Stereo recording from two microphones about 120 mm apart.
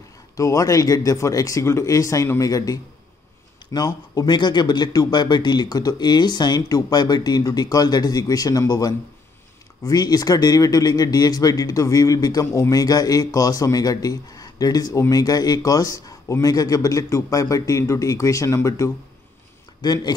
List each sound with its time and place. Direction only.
0.4 s speech: 30° left (ahead or behind)